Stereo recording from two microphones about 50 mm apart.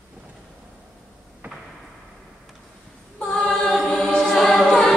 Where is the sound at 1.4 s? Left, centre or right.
Right.